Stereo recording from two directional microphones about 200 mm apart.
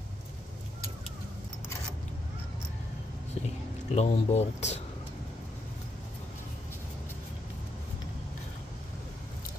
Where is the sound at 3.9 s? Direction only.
35° left (ahead or behind).